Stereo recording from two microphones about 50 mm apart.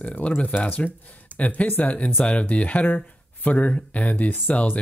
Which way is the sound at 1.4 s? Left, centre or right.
Left.